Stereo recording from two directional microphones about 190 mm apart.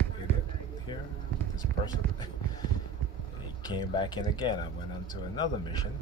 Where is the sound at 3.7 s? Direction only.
25° left (ahead or behind).